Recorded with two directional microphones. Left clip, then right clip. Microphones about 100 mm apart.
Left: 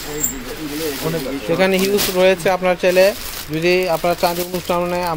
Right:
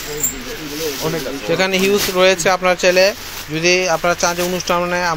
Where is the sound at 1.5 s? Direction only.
Centre (ahead or behind).